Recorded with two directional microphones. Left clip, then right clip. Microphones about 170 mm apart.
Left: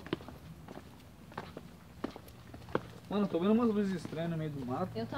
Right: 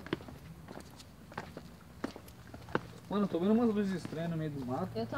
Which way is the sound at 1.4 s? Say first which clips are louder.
Even; 5° right (ahead or behind).